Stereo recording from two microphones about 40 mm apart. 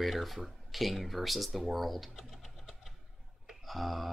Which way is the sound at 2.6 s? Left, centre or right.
Centre.